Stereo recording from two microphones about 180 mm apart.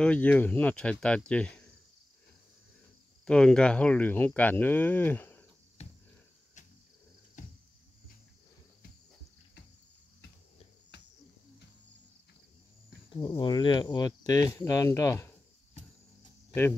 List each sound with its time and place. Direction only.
0.0 s speech: 5° left (ahead or behind)
3.3 s speech: 5° left (ahead or behind)
5.8 s a sound: 35° left (ahead or behind)
7.4 s a sound: 45° left (ahead or behind)
10.9 s cricket: 70° left (ahead or behind)
13.2 s speech: 25° left (ahead or behind)